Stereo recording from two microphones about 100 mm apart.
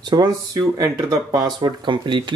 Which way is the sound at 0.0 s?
45° right (ahead or behind).